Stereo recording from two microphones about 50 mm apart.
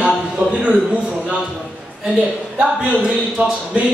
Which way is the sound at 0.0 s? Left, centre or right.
Centre.